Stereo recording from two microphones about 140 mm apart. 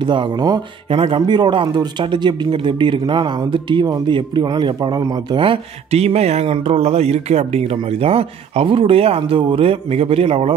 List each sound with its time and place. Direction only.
0.0 s speech: 35° right (ahead or behind)